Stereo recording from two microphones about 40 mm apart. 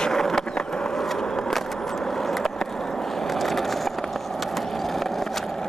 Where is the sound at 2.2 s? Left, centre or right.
Centre.